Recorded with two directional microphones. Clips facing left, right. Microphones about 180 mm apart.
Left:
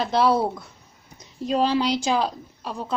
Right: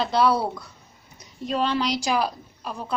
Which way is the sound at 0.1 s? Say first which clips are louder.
Left 3 dB; 25° left (ahead or behind).